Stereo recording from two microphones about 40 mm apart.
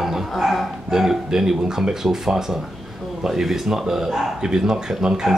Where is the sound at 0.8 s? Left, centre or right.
Centre.